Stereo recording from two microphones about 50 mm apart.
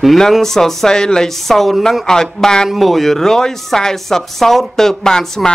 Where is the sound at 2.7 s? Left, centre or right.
Centre.